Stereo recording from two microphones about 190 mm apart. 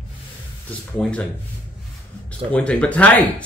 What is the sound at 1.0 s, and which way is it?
Speech, 5° left (ahead or behind).